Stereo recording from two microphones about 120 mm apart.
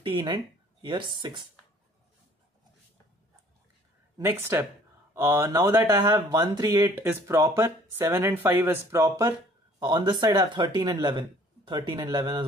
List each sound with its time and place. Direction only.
0.0 s speech: 45° right (ahead or behind)
4.2 s speech: 20° right (ahead or behind)
9.8 s speech: 40° right (ahead or behind)